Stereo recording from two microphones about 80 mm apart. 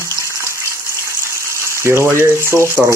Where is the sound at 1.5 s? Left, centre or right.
Right.